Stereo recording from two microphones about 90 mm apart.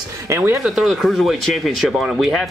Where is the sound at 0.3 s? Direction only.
30° right (ahead or behind).